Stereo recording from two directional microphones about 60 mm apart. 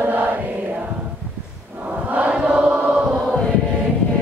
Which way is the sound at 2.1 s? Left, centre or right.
Right.